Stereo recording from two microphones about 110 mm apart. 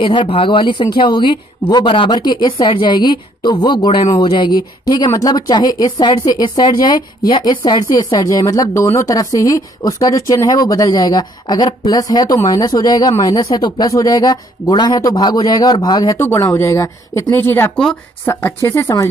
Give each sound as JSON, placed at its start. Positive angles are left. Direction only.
{"t": 0.0, "sound": "speech", "side_deg": 45}
{"t": 16.3, "sound": "speech", "side_deg": 25}